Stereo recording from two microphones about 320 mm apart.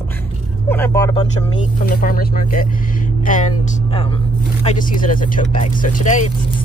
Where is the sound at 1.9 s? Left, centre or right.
Left.